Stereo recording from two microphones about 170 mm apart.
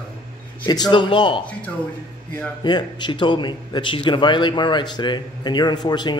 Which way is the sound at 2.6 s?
25° left (ahead or behind).